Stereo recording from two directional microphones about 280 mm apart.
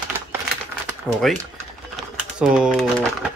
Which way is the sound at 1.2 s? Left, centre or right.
Centre.